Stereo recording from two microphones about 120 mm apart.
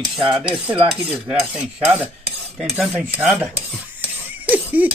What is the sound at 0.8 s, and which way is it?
Cutlery, 5° right (ahead or behind).